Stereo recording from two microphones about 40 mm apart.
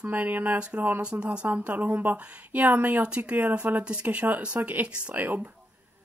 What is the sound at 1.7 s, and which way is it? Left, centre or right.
Speech, right.